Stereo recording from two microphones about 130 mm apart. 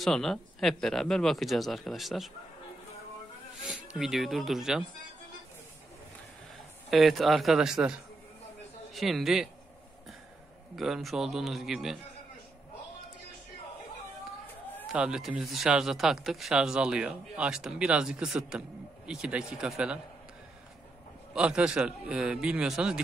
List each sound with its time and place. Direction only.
0.0 s speech: 5° left (ahead or behind)
3.6 s speech: 5° right (ahead or behind)
6.9 s speech: centre (ahead or behind)
10.8 s speech: centre (ahead or behind)
14.9 s a man's voice: 5° right (ahead or behind)
21.4 s a man's voice: 10° right (ahead or behind)